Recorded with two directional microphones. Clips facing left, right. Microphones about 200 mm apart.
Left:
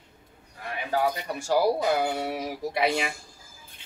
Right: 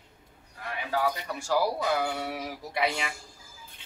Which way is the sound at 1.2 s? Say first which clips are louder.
Left 4 dB; 20° left (ahead or behind).